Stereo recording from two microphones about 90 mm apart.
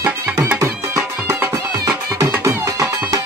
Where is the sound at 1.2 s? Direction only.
30° right (ahead or behind).